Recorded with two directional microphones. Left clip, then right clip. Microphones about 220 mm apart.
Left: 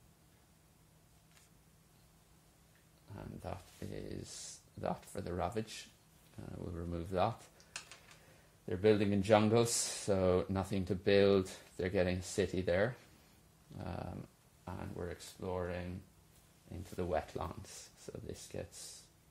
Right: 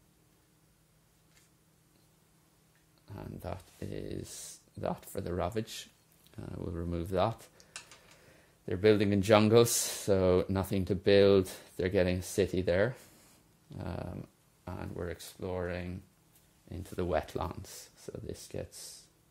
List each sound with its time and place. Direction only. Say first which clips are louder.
3.1 s speech: right 4 dB; 45° right (ahead or behind)
8.6 s speech: right 4 dB; 40° right (ahead or behind)